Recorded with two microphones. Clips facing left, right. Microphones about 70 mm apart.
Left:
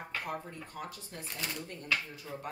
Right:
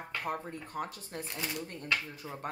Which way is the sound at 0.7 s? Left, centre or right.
Right.